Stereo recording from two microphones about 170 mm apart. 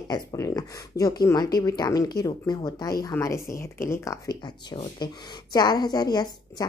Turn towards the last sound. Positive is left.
turn(degrees=25)  # may be behind; listen again after turning